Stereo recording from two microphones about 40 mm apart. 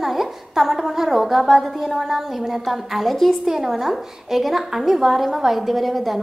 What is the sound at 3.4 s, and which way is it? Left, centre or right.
A woman's voice, centre.